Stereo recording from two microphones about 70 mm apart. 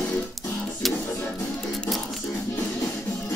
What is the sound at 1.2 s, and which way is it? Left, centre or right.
Music, centre.